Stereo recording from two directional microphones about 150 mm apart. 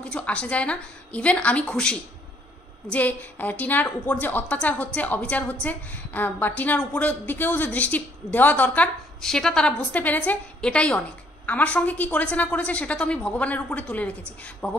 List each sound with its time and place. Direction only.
0.0 s a woman's voice: 10° left (ahead or behind)